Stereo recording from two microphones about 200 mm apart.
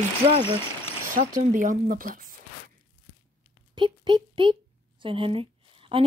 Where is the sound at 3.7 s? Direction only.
25° right (ahead or behind).